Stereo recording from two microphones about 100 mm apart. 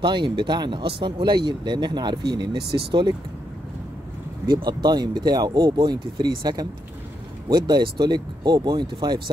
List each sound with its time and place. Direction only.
0.0 s speech: 55° right (ahead or behind)
4.5 s speech: 45° right (ahead or behind)